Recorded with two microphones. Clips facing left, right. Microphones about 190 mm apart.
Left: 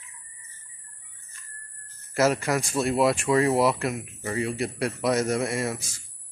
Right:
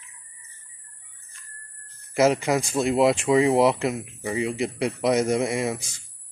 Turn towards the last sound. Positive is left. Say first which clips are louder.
# right 3 dB
turn(degrees=-20)  # may be behind; listen again after turning